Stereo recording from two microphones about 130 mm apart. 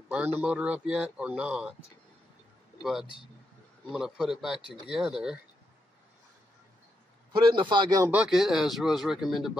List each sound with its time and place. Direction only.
0.4 s speech: 10° right (ahead or behind)
2.8 s speech: centre (ahead or behind)
7.3 s a man's voice: 40° right (ahead or behind)
8.1 s speech: 5° right (ahead or behind)